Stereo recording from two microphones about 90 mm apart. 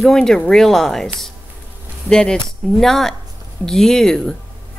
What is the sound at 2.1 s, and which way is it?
Speech, 10° left (ahead or behind).